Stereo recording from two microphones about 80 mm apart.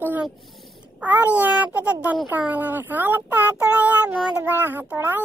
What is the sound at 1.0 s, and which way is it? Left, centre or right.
Child singing, centre.